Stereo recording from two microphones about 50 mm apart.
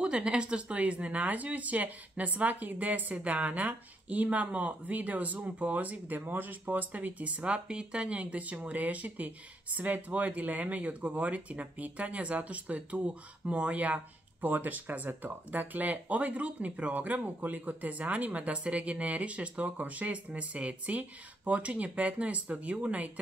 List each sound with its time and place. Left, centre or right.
0.0 s speech: right